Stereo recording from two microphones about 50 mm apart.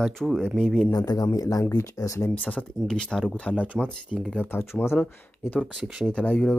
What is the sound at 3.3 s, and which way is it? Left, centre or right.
Speech, left.